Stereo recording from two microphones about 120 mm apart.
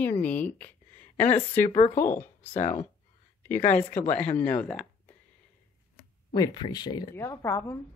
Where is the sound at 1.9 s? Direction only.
20° left (ahead or behind).